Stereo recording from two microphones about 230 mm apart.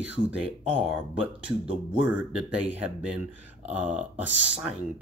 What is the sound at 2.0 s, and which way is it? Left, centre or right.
Speech, centre.